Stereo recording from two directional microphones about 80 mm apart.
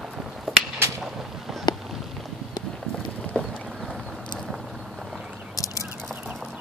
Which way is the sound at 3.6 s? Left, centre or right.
Centre.